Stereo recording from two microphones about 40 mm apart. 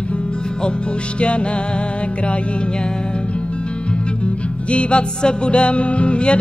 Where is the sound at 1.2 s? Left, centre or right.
Left.